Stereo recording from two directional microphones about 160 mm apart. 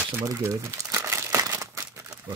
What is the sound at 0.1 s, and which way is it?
Crumpling, 20° right (ahead or behind).